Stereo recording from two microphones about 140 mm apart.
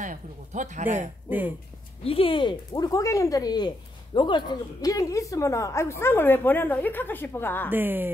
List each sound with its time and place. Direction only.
0.0 s speech: 65° right (ahead or behind)
2.0 s speech: 40° left (ahead or behind); by 7.7 s 15° left (ahead or behind)
7.7 s a woman's voice: 15° right (ahead or behind)